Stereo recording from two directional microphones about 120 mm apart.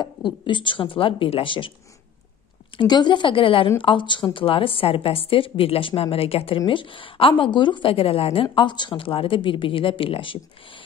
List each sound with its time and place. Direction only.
0.0 s a woman's voice: 40° left (ahead or behind)
2.8 s a woman's voice: 40° left (ahead or behind)